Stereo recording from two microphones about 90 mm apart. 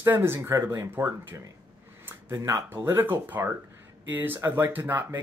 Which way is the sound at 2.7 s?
25° right (ahead or behind).